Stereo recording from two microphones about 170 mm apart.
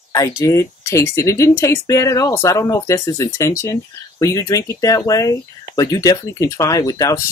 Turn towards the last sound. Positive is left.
turn(degrees=20)  # may be behind; listen again after turning